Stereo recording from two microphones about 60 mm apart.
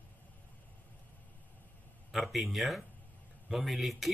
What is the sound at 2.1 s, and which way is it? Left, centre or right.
Speech, centre.